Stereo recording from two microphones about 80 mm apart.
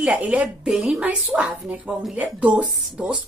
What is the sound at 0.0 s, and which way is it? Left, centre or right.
Speech, centre.